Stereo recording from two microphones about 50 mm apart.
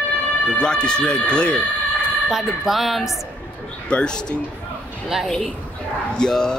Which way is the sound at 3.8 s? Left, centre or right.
Centre.